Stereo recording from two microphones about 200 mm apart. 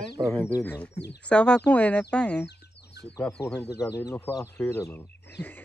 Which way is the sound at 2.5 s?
55° left (ahead or behind).